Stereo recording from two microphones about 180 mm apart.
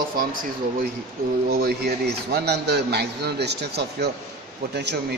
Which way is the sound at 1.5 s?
60° right (ahead or behind).